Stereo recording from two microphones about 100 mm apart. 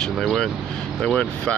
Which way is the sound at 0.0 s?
5° left (ahead or behind).